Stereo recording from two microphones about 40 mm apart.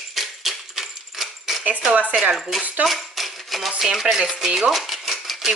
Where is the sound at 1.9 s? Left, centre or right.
Right.